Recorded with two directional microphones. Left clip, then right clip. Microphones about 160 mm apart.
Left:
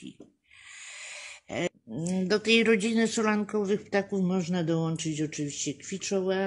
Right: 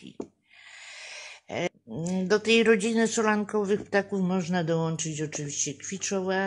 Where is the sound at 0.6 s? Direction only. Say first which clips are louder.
Even; 20° left (ahead or behind).